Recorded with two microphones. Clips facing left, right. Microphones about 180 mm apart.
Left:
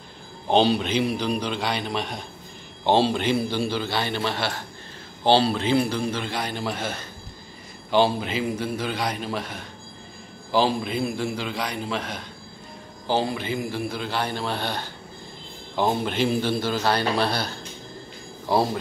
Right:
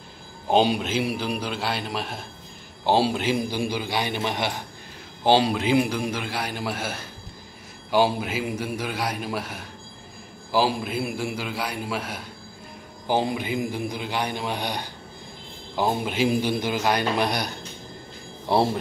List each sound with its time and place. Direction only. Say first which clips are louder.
0.5 s a man's voice: left 1 dB; 10° right (ahead or behind)